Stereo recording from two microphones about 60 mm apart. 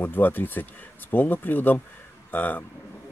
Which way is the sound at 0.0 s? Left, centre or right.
Left.